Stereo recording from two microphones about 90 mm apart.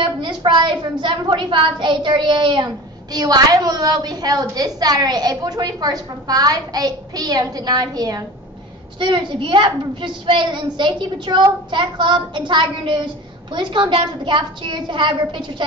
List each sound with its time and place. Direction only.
0.0 s a woman's voice: 60° right (ahead or behind)
9.0 s a woman's voice: 65° right (ahead or behind)